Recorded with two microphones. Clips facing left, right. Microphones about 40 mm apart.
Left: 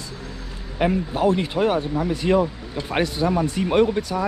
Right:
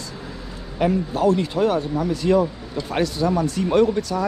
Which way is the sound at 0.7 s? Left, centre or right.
Left.